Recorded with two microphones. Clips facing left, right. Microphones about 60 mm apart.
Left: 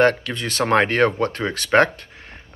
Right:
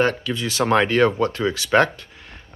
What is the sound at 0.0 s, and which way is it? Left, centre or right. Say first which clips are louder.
Speech: left 3 dB; left.